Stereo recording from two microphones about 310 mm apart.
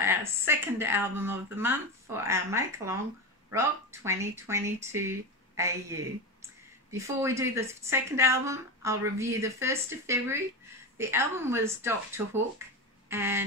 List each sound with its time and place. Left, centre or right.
0.0 s a woman's voice: centre
13.1 s a woman's voice: centre